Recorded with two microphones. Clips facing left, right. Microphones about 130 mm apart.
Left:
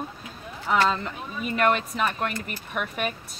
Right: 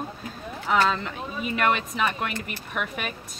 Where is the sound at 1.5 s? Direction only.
Centre (ahead or behind).